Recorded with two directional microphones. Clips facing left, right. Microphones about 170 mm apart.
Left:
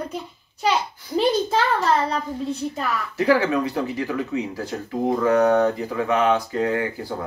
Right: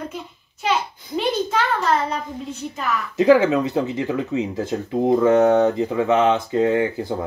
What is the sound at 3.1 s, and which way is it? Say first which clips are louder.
Speech: right 5 dB; 20° right (ahead or behind).